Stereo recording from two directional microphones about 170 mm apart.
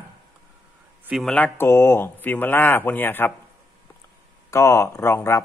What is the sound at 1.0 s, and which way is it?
Speech, centre (ahead or behind).